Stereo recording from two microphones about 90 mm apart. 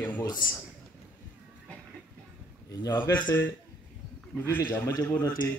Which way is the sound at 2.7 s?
50° left (ahead or behind).